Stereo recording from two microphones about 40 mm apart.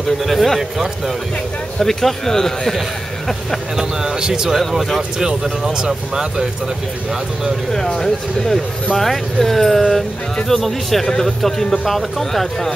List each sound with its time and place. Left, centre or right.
0.2 s speech: centre
1.8 s speech: centre
4.2 s speech: centre
5.7 s speech: centre
7.7 s speech: centre